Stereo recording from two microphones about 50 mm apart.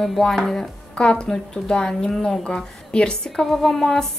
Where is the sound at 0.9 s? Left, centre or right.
Left.